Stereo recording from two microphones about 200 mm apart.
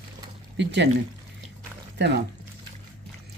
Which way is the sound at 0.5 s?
60° right (ahead or behind).